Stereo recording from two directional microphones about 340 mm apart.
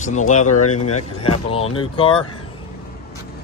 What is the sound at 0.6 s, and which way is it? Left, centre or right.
Speech, left.